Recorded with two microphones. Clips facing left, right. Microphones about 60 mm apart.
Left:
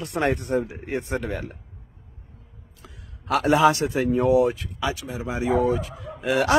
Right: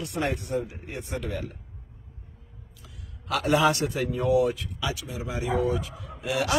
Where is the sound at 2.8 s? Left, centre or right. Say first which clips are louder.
Left 3 dB; left.